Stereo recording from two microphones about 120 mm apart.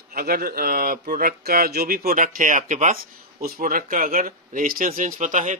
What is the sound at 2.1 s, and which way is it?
Speech, 90° right.